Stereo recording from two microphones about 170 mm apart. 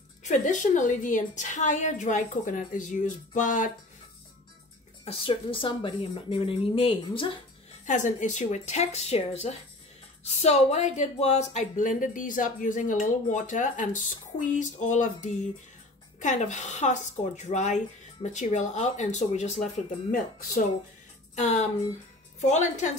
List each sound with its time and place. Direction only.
0.2 s speech: 45° left (ahead or behind)
5.0 s speech: 35° left (ahead or behind)
7.8 s speech: 45° left (ahead or behind)
21.4 s speech: 45° left (ahead or behind)